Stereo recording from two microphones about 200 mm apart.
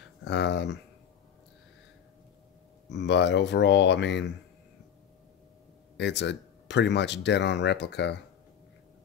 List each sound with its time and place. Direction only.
0.2 s speech: 60° left (ahead or behind)
2.9 s speech: 60° left (ahead or behind)
5.9 s speech: 60° left (ahead or behind)